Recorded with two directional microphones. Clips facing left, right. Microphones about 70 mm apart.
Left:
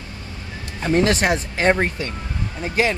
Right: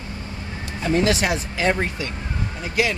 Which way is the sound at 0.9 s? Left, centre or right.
Left.